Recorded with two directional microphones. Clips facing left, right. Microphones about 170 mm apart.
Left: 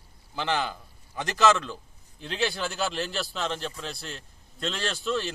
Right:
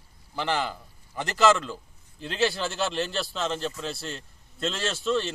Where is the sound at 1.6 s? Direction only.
Centre (ahead or behind).